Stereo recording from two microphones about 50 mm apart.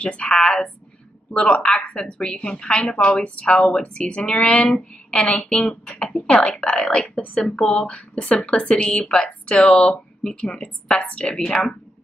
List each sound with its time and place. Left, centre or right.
0.0 s a woman's voice: left